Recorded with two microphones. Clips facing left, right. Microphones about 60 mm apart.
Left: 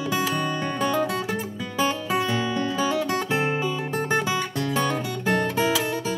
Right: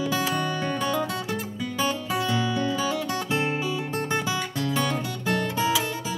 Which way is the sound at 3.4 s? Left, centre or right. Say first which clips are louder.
Left 2 dB; left.